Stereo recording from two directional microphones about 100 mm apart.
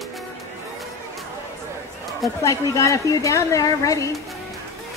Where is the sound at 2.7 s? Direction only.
30° left (ahead or behind).